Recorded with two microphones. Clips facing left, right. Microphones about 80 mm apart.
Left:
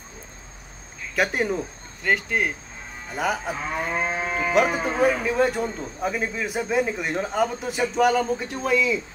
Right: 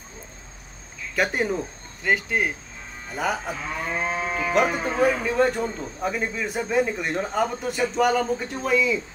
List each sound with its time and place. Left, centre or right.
1.1 s speech: centre
3.8 s moo: left
4.5 s speech: centre